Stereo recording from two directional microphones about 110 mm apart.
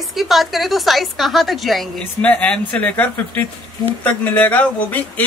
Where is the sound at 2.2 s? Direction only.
10° left (ahead or behind).